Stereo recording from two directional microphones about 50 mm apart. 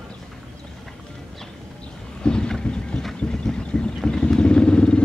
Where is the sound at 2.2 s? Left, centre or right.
Centre.